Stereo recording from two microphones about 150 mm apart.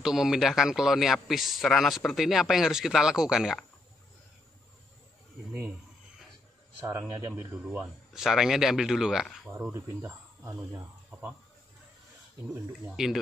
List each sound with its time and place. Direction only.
0.0 s speech: 5° right (ahead or behind)
6.8 s speech: 15° right (ahead or behind)
9.5 s speech: 15° right (ahead or behind)
12.9 s speech: 5° right (ahead or behind)